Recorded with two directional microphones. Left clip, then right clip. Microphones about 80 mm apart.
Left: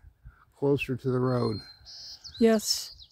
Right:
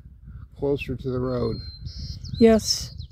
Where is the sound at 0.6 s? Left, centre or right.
Left.